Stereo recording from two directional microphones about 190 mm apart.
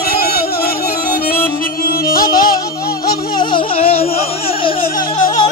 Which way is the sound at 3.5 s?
30° left (ahead or behind).